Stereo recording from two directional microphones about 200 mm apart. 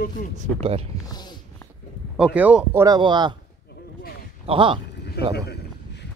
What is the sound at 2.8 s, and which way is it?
Speech, 20° right (ahead or behind).